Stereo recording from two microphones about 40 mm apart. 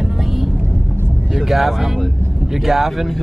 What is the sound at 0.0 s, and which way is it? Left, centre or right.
Vehicle, centre.